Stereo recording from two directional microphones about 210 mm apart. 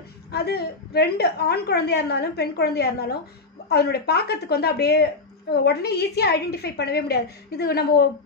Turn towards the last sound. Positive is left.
turn(degrees=50)  # may be behind; listen again after turning